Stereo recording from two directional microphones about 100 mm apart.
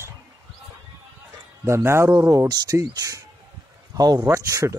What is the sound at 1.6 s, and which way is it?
Speech, 25° right (ahead or behind).